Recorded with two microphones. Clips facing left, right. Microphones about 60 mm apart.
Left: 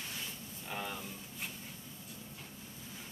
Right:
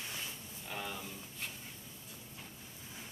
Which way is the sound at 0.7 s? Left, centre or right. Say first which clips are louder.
Left 1 dB; centre.